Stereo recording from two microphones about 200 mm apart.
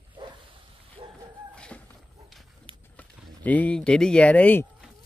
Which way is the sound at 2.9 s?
5° left (ahead or behind).